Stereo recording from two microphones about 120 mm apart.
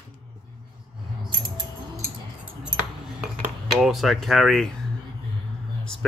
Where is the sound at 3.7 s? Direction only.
Centre (ahead or behind).